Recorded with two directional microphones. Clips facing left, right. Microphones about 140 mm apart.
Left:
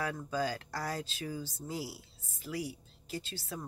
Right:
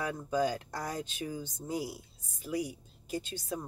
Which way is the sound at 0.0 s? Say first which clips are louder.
Right 3 dB; 20° right (ahead or behind).